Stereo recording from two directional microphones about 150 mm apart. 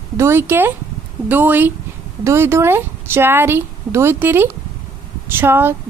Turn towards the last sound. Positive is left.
turn(degrees=-15)  # may be behind; listen again after turning